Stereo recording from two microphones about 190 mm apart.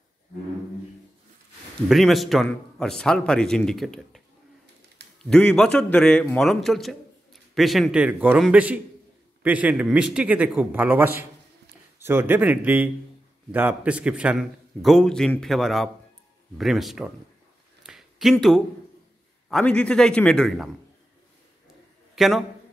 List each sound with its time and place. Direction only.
1.9 s a man's voice: centre (ahead or behind)
5.0 s a sound: 65° right (ahead or behind)
5.3 s a man's voice: 5° left (ahead or behind)
17.8 s a sound: centre (ahead or behind)
19.5 s a man's voice: 5° left (ahead or behind)
22.1 s a man's voice: centre (ahead or behind)